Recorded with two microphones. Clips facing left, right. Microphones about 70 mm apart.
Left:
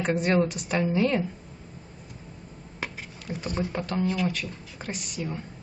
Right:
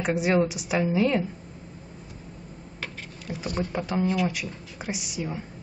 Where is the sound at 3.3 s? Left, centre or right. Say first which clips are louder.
Right 1 dB; centre.